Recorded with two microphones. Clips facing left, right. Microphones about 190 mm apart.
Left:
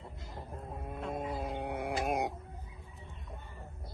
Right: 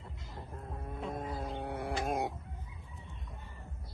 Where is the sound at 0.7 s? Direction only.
25° left (ahead or behind).